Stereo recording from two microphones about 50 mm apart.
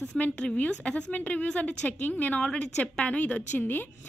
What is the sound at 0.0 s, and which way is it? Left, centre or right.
A woman's voice, left.